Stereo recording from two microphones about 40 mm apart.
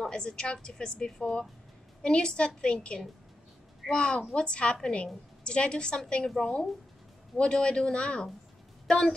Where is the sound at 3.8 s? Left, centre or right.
Left.